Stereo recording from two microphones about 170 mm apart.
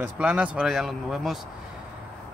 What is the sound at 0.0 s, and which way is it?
Speech, 5° right (ahead or behind).